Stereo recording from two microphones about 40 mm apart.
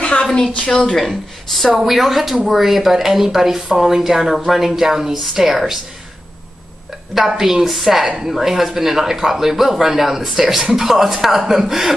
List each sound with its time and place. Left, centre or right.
0.0 s a sound: left
0.9 s speech: centre
7.2 s speech: centre